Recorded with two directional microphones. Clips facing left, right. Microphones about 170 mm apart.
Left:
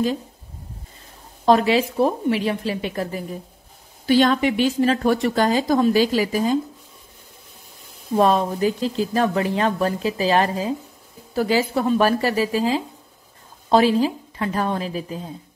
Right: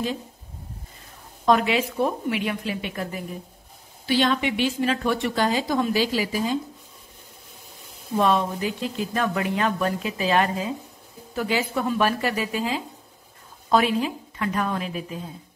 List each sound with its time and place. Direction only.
1.4 s a woman's voice: 30° left (ahead or behind)
8.2 s speech: 40° left (ahead or behind)